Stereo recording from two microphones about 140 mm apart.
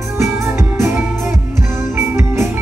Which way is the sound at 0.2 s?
20° right (ahead or behind).